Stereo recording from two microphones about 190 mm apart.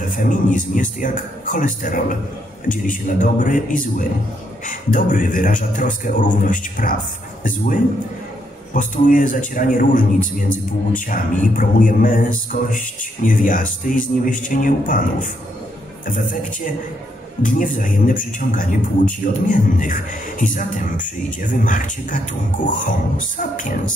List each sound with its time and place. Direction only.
0.1 s a man's voice: 45° left (ahead or behind)
17.4 s a man's voice: 45° left (ahead or behind)